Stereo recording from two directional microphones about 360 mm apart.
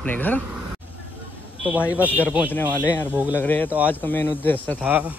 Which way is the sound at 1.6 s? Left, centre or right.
Centre.